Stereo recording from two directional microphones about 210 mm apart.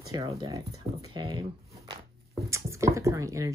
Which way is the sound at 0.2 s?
30° right (ahead or behind).